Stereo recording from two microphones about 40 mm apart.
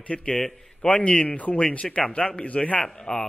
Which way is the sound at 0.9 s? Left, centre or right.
Left.